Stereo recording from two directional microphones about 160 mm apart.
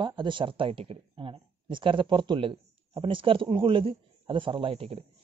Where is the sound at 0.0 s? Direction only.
30° right (ahead or behind).